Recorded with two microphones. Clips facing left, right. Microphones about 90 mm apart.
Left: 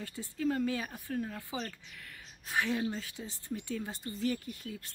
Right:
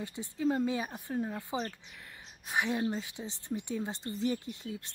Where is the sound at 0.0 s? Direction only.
20° right (ahead or behind).